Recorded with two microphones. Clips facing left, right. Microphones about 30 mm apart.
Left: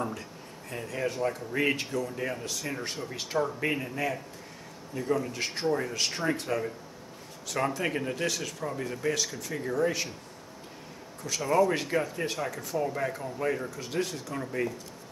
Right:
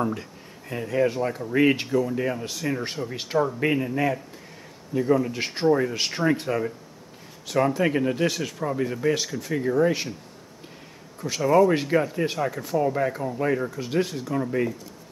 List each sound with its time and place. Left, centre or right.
0.7 s speech: centre
11.4 s speech: centre